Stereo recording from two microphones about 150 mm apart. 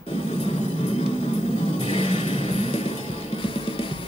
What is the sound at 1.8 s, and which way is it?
Music, 40° left (ahead or behind).